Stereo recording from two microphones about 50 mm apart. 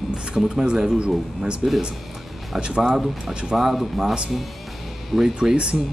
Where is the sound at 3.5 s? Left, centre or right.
Centre.